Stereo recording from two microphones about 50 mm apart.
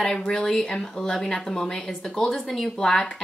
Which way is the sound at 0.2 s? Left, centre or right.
Centre.